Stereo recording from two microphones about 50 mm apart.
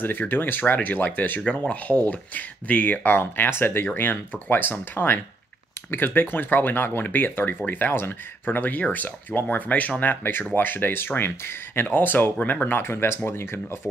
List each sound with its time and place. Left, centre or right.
0.0 s speech: left
1.4 s speech: left
12.8 s speech: left